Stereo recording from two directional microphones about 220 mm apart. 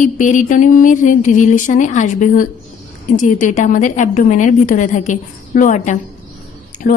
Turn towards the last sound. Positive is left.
turn(degrees=40)  # may be behind; listen again after turning